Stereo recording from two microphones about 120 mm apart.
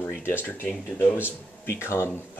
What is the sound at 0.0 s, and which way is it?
Speech, 20° left (ahead or behind).